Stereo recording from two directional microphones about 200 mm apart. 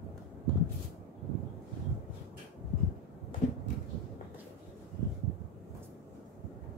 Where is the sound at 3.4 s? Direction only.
40° left (ahead or behind).